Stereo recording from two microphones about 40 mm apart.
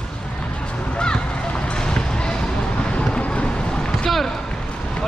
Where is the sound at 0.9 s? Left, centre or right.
Left.